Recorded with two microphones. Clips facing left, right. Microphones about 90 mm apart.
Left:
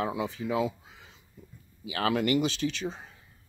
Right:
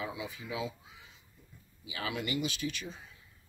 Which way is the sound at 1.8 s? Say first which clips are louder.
Left 10 dB; 55° left (ahead or behind).